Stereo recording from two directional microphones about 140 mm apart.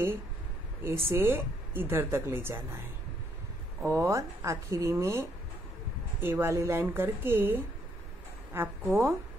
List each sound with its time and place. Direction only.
0.8 s a woman's voice: 15° right (ahead or behind)
3.8 s speech: 20° right (ahead or behind)
6.2 s a woman's voice: 15° right (ahead or behind)